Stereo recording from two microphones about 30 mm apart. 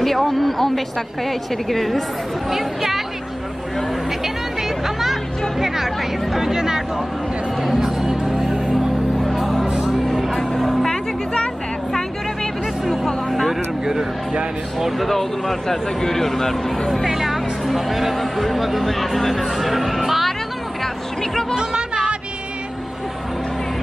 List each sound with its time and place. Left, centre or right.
0.0 s speech: centre
2.5 s speech: centre
4.2 s music: centre
5.6 s chatter: centre
6.5 s speech: centre
7.7 s music: centre
9.4 s music: centre
10.2 s vehicle: centre
12.8 s music: centre
13.5 s vehicle: centre
14.8 s speech: centre
15.1 s speech: centre
17.1 s speech: centre
20.8 s a sound: centre